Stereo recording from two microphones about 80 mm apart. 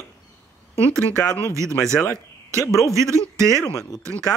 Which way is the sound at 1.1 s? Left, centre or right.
Centre.